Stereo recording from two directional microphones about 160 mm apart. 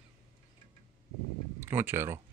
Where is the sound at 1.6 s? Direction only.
15° right (ahead or behind).